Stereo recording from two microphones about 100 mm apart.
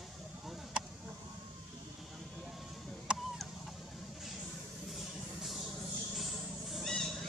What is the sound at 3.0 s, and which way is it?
Vehicle, centre (ahead or behind).